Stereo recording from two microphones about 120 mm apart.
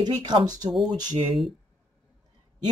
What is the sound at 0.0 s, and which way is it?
Speech, 40° right (ahead or behind).